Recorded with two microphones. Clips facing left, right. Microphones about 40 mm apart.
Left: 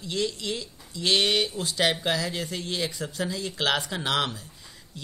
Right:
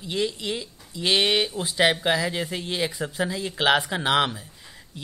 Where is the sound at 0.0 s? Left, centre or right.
Centre.